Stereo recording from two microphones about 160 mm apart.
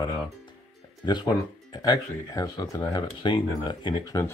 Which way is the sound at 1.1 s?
25° left (ahead or behind).